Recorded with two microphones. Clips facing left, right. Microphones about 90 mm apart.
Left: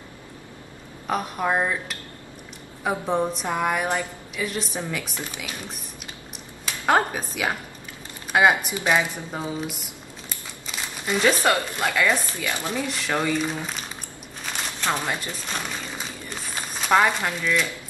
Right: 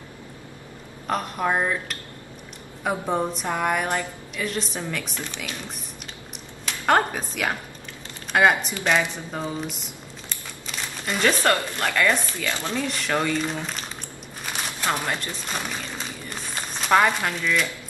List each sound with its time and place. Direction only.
1.0 s a woman's voice: 5° left (ahead or behind)
6.9 s a woman's voice: 5° left (ahead or behind)
12.8 s speech: centre (ahead or behind)
14.4 s crumpling: 5° right (ahead or behind)
15.0 s a woman's voice: 5° left (ahead or behind)